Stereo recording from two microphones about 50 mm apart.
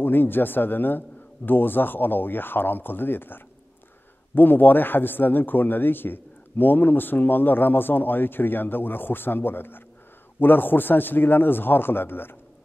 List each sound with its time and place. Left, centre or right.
0.0 s a man's voice: left